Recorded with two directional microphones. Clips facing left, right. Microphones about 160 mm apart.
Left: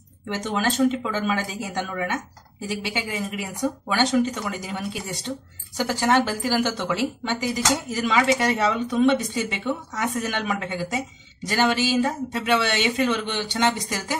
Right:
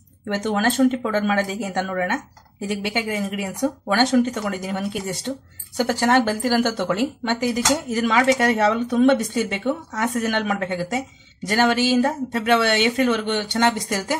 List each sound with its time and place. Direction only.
0.3 s a woman's voice: 55° right (ahead or behind)